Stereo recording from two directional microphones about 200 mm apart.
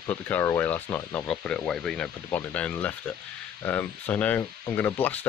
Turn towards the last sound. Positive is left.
turn(degrees=10)  # may be behind; listen again after turning